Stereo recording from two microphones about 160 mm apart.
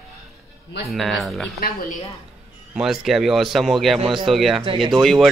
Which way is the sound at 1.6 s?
65° left (ahead or behind).